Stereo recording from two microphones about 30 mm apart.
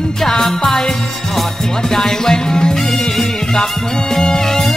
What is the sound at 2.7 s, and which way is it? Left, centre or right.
Music, centre.